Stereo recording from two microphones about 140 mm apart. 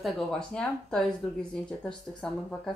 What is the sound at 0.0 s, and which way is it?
A woman's voice, 5° left (ahead or behind).